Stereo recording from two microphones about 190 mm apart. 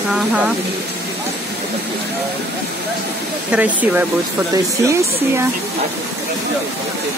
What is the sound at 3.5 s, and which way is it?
Speech, 10° right (ahead or behind).